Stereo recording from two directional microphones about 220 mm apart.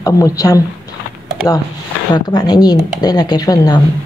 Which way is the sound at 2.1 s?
20° left (ahead or behind).